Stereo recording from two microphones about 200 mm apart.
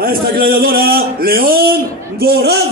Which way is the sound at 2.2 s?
50° right (ahead or behind).